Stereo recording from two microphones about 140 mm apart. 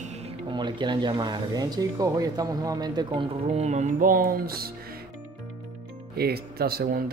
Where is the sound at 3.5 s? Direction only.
55° right (ahead or behind).